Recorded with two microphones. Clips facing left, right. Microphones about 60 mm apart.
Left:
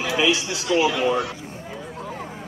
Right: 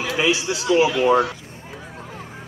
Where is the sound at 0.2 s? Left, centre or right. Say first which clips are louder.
Right 2 dB; right.